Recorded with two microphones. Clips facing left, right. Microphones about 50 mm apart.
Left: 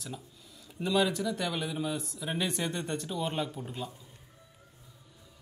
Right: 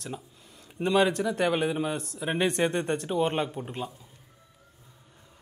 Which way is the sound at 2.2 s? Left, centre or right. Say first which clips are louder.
Right 8 dB; right.